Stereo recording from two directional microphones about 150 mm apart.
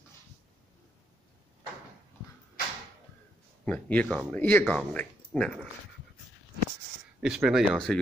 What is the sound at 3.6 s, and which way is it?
Speech, 10° left (ahead or behind).